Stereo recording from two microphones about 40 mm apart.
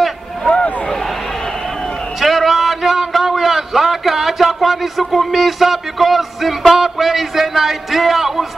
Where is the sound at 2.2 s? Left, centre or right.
Centre.